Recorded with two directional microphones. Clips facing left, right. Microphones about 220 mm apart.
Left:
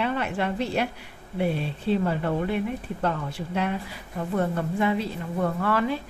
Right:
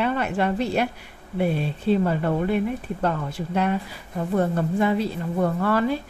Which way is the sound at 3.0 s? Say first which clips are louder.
Right 1 dB; 45° right (ahead or behind).